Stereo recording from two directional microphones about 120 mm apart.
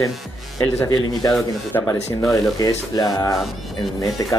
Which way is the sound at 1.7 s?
20° left (ahead or behind).